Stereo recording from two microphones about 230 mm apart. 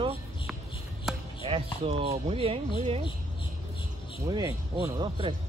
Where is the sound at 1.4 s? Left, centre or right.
Right.